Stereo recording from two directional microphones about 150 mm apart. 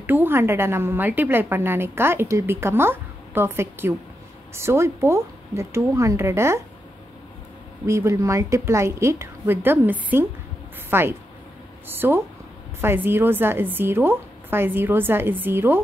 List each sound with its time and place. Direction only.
0.0 s a woman's voice: 15° right (ahead or behind)
7.8 s a woman's voice: 20° right (ahead or behind)